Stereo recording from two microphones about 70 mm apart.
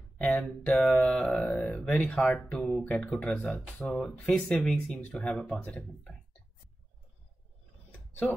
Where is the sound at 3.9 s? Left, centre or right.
Centre.